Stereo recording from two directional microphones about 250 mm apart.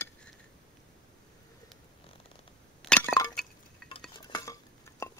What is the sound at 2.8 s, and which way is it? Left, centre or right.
Chink, centre.